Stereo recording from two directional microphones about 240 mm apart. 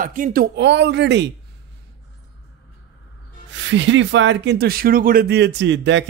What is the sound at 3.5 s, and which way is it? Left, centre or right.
Speech, right.